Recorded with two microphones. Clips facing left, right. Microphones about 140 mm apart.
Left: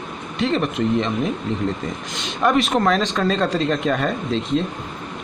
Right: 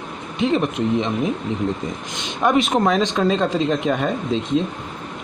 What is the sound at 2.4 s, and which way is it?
Speech, 10° right (ahead or behind).